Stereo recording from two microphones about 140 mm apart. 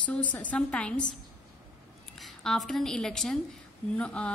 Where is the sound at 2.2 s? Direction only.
Centre (ahead or behind).